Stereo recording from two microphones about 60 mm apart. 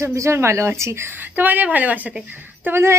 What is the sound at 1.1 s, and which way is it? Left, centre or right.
A woman's voice, right.